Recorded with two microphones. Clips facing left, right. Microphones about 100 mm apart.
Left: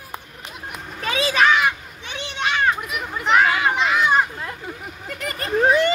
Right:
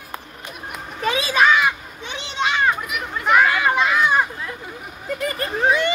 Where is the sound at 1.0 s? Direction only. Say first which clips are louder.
Right 1 dB; 20° right (ahead or behind).